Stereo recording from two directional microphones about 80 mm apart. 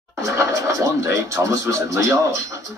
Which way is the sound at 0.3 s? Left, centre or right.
Right.